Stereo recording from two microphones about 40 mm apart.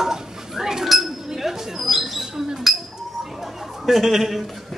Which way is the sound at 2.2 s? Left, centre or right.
Centre.